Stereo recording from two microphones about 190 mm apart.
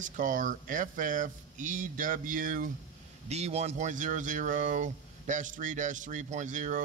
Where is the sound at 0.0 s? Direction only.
45° right (ahead or behind).